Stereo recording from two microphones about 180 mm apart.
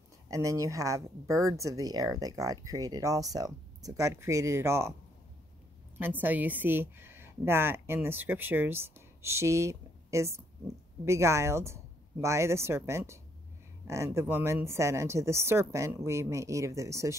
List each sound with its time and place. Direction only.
0.3 s speech: 15° right (ahead or behind)
5.9 s a woman's voice: 10° right (ahead or behind)